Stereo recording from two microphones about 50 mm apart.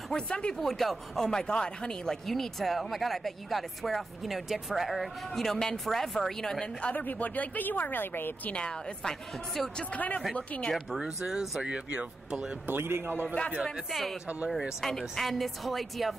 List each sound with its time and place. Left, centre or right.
0.1 s speech: centre
0.6 s speech: centre
2.2 s speech: centre
6.6 s a woman's voice: left
7.0 s speech: left
8.5 s a woman's voice: centre
9.6 s speech: centre
9.9 s a woman's voice: left
11.0 s speech: centre
11.6 s speech: right
12.6 s a man's voice: right
13.8 s speech: centre